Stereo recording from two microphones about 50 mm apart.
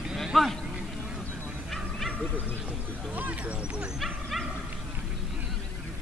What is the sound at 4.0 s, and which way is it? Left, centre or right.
Dog, centre.